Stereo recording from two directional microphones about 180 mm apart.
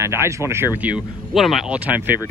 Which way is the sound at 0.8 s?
5° right (ahead or behind).